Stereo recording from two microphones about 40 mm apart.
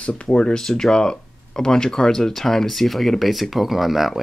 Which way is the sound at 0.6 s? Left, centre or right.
Centre.